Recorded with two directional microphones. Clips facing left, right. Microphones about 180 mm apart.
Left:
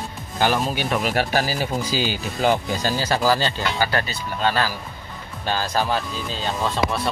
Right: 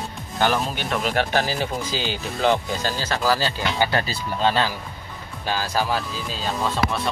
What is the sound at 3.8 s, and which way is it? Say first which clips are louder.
Speech: right 2 dB; 25° right (ahead or behind).